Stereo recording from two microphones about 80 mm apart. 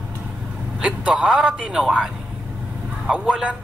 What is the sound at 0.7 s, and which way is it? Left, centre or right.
A man's voice, centre.